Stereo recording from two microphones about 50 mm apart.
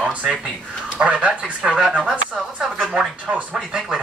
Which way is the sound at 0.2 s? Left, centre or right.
Centre.